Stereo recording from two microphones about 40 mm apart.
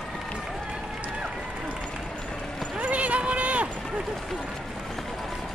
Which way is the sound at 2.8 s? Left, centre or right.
Right.